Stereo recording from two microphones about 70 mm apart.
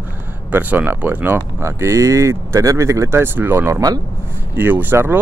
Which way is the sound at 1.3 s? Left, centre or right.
Right.